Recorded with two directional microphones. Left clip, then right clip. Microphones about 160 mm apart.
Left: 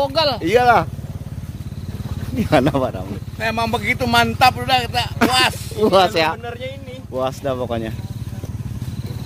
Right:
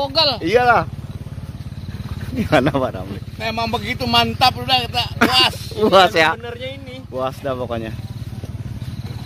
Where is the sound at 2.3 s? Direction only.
5° left (ahead or behind).